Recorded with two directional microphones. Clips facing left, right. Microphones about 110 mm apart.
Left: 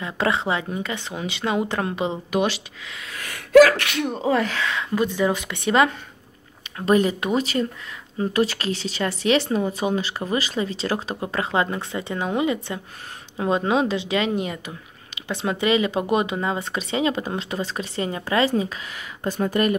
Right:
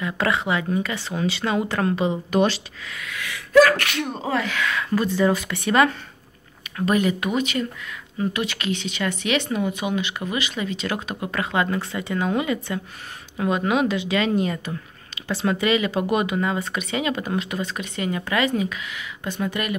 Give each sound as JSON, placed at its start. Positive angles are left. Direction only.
{"t": 0.0, "sound": "speech", "side_deg": 25}
{"t": 3.1, "sound": "a sound", "side_deg": 45}
{"t": 3.8, "sound": "speech", "side_deg": 15}
{"t": 4.4, "sound": "speech", "side_deg": 35}